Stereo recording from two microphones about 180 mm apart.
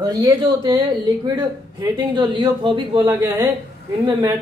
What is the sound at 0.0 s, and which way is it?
A man's voice, 20° right (ahead or behind).